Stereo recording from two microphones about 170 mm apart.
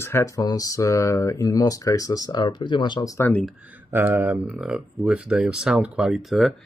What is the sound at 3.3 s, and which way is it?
Speech, 10° left (ahead or behind).